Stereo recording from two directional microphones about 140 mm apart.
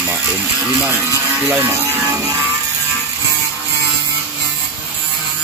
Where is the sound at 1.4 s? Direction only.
15° right (ahead or behind).